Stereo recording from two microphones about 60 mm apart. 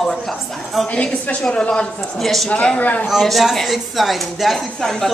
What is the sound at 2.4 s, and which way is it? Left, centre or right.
Speech, left.